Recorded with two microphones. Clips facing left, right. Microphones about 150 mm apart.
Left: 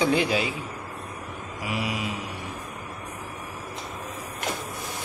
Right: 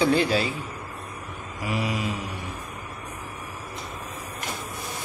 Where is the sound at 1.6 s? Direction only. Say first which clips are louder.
Right 2 dB; 10° left (ahead or behind).